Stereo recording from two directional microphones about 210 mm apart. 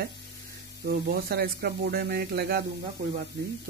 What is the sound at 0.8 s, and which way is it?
Speech, 50° right (ahead or behind).